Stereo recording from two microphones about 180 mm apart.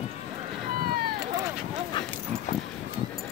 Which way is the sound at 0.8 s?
60° right (ahead or behind).